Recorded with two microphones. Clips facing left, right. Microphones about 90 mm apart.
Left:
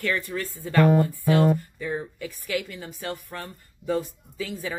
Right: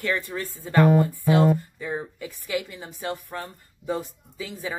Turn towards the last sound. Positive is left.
turn(degrees=-20)  # may be behind; listen again after turning